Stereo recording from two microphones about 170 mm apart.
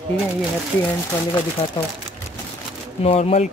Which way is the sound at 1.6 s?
30° left (ahead or behind).